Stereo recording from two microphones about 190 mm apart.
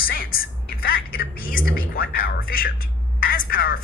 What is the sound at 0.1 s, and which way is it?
A woman's voice, 50° left (ahead or behind).